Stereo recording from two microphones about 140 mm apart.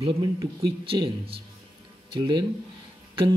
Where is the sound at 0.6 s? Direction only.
40° right (ahead or behind).